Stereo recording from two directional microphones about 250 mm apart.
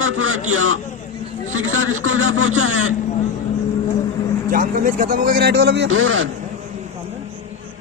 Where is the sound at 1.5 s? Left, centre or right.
Right.